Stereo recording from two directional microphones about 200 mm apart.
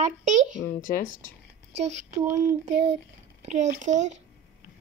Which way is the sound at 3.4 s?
35° right (ahead or behind).